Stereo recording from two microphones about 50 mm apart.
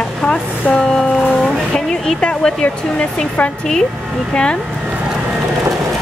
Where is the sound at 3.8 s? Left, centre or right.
Right.